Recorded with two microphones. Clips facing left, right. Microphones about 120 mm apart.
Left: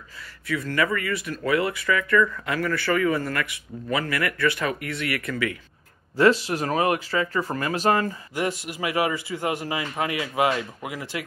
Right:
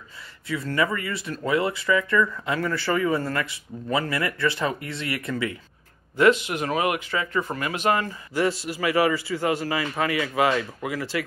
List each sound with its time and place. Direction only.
0.5 s speech: 25° right (ahead or behind)
6.1 s speech: 35° left (ahead or behind)
8.3 s a man's voice: 20° left (ahead or behind)